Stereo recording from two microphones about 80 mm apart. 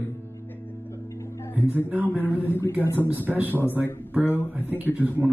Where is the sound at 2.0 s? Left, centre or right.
Left.